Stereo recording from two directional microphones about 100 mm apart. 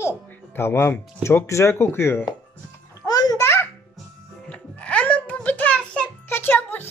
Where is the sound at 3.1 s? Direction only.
40° left (ahead or behind).